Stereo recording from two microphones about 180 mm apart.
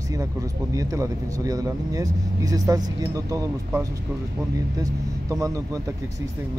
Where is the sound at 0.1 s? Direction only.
20° right (ahead or behind).